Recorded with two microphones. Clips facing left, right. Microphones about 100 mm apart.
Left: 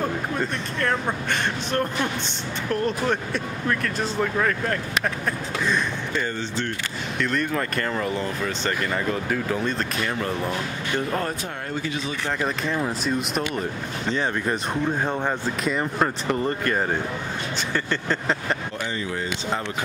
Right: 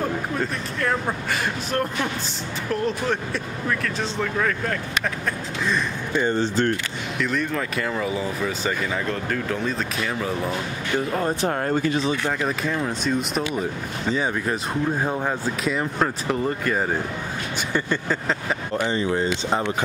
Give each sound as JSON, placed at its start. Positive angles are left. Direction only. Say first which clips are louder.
{"t": 0.0, "sound": "speech", "louder": "even", "side_deg": 0}
{"t": 6.3, "sound": "speech", "louder": "right 7 dB", "side_deg": -45}
{"t": 7.2, "sound": "speech", "louder": "even", "side_deg": 0}
{"t": 11.4, "sound": "speech", "louder": "right 8 dB", "side_deg": -45}
{"t": 12.4, "sound": "speech", "louder": "right 1 dB", "side_deg": 0}
{"t": 17.7, "sound": "a sound", "louder": "right 2 dB", "side_deg": -10}
{"t": 18.9, "sound": "speech", "louder": "right 7 dB", "side_deg": -30}